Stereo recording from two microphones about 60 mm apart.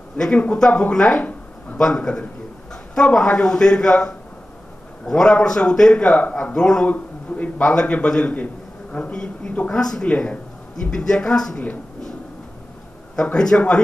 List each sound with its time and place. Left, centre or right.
0.2 s a man's voice: centre
5.0 s a man's voice: centre
6.9 s a man's voice: left; by 10.0 s centre
10.0 s a man's voice: left
13.1 s a man's voice: centre